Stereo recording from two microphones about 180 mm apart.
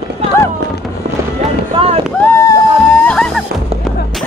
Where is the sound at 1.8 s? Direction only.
30° right (ahead or behind).